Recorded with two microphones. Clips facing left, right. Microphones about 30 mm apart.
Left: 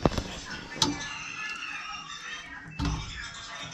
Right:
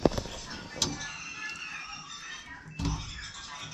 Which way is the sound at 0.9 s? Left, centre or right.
Left.